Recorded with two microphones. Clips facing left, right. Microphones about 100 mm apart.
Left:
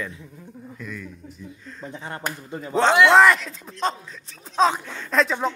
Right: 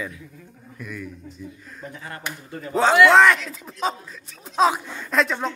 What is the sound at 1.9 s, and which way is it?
Speech, 25° left (ahead or behind).